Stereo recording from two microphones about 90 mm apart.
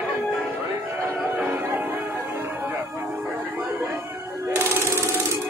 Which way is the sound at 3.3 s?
20° right (ahead or behind).